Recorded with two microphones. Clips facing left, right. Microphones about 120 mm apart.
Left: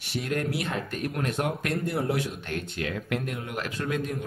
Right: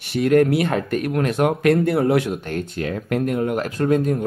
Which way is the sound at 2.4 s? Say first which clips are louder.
Right 6 dB; 40° right (ahead or behind).